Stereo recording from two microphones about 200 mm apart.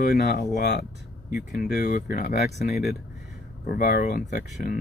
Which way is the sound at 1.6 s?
45° left (ahead or behind).